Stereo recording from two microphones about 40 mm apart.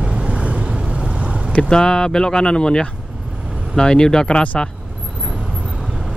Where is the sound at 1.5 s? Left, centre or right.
Left.